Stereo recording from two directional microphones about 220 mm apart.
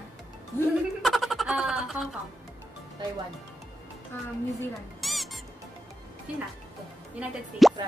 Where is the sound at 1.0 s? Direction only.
Centre (ahead or behind).